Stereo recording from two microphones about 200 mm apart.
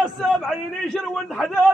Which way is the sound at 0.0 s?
Centre (ahead or behind).